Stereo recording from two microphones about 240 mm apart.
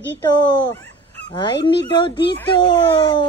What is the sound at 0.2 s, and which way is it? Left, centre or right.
Speech, centre.